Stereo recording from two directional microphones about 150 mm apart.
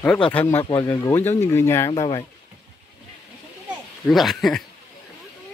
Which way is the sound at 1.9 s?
30° left (ahead or behind).